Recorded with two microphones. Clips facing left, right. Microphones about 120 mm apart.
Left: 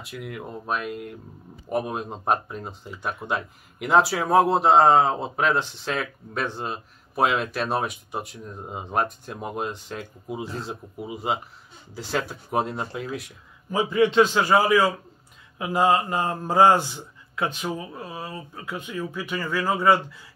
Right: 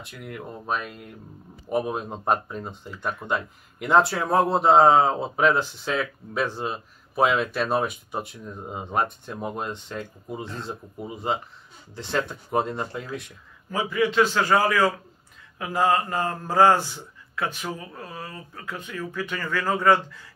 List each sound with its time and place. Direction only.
0.0 s speech: 5° left (ahead or behind)
13.7 s a man's voice: 20° left (ahead or behind)